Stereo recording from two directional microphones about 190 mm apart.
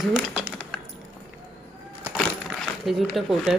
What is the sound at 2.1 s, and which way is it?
Coin, centre (ahead or behind).